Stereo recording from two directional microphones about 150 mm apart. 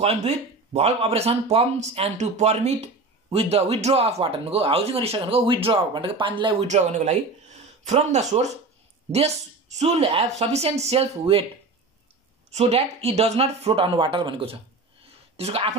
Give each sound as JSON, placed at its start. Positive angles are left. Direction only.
{"t": 0.7, "sound": "speech", "side_deg": -45}
{"t": 6.6, "sound": "a woman's voice", "side_deg": -50}
{"t": 12.4, "sound": "speech", "side_deg": -45}
{"t": 15.0, "sound": "a sound", "side_deg": -40}